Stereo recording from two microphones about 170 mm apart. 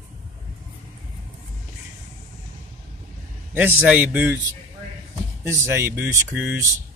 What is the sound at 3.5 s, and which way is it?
Speech, 10° right (ahead or behind).